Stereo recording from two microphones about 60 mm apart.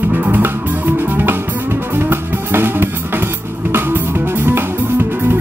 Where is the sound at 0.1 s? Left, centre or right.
Right.